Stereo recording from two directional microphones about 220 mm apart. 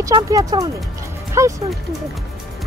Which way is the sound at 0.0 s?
15° right (ahead or behind).